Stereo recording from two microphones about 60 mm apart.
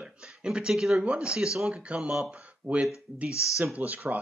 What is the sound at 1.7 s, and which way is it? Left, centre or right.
Speech, centre.